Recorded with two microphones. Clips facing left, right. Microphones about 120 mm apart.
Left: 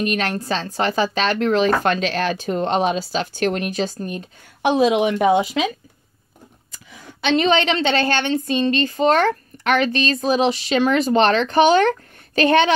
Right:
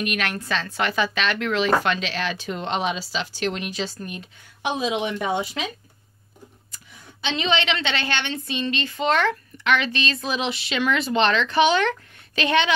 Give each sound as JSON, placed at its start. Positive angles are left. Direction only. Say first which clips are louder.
{"t": 0.0, "sound": "a woman's voice", "louder": "left 5 dB", "side_deg": 35}
{"t": 4.6, "sound": "a woman's voice", "louder": "left 8 dB", "side_deg": 60}
{"t": 7.1, "sound": "a woman's voice", "louder": "left 7 dB", "side_deg": 60}